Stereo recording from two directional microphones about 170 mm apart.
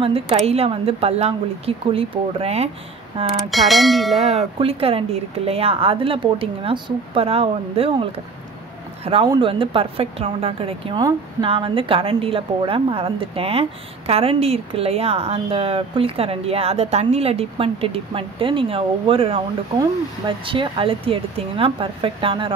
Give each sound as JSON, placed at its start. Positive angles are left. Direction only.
{"t": 0.0, "sound": "a woman's voice", "side_deg": -35}
{"t": 3.4, "sound": "speech", "side_deg": 0}
{"t": 4.2, "sound": "a woman's voice", "side_deg": -40}